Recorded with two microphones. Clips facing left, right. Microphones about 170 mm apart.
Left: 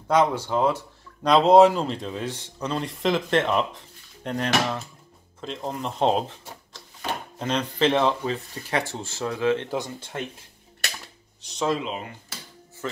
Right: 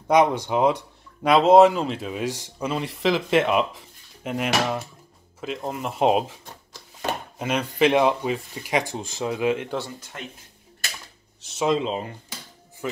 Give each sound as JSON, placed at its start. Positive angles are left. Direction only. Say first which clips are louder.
{"t": 0.1, "sound": "speech", "louder": "right 2 dB", "side_deg": -15}
{"t": 1.3, "sound": "speech", "louder": "right 1 dB", "side_deg": 0}
{"t": 7.3, "sound": "speech", "louder": "right 2 dB", "side_deg": -10}
{"t": 9.8, "sound": "speech", "louder": "left 2 dB", "side_deg": 25}
{"t": 11.4, "sound": "speech", "louder": "left 2 dB", "side_deg": -5}
{"t": 11.8, "sound": "speech", "louder": "right 5 dB", "side_deg": -30}
{"t": 12.8, "sound": "music", "louder": "right 2 dB", "side_deg": -10}